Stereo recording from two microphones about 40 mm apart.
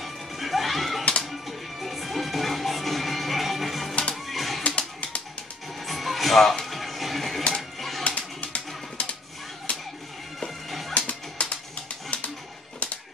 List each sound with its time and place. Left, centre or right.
0.0 s music: centre
4.6 s typewriter: left
5.9 s music: centre
8.1 s a sound: left
9.7 s music: left
10.9 s music: left
12.1 s a sound: left